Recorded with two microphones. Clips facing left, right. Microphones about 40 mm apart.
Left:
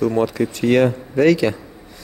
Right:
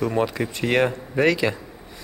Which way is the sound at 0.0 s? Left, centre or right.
Centre.